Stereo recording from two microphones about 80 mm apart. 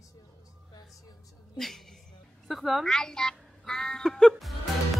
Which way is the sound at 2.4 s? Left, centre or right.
Centre.